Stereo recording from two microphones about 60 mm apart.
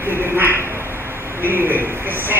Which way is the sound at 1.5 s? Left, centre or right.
Right.